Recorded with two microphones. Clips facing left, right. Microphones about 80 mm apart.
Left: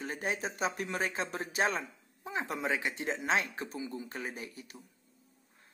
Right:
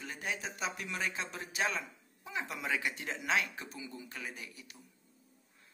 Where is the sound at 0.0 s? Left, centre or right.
Left.